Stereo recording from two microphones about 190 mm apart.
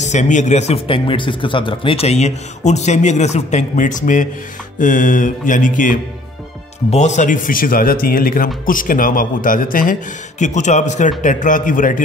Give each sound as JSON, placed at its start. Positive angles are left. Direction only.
{"t": 0.0, "sound": "a man's voice", "side_deg": 40}